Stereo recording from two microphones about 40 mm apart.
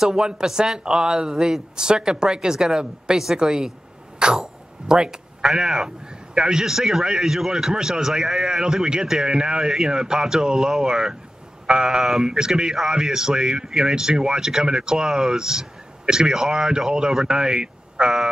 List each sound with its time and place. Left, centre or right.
0.0 s a man's voice: centre